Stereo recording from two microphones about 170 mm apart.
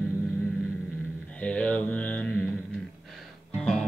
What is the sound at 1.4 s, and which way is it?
Mantra, 10° left (ahead or behind).